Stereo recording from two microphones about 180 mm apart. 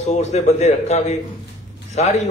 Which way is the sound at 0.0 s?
40° left (ahead or behind).